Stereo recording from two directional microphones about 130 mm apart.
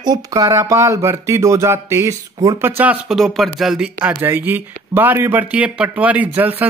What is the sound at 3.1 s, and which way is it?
Speech, centre (ahead or behind).